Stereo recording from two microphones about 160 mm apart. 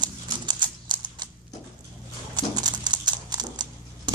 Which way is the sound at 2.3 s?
25° right (ahead or behind).